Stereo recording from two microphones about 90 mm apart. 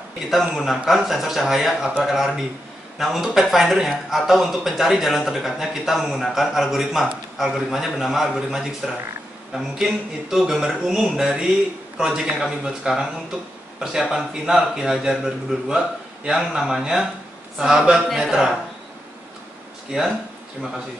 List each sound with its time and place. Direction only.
0.8 s speech: centre (ahead or behind)
19.9 s speech: 5° right (ahead or behind)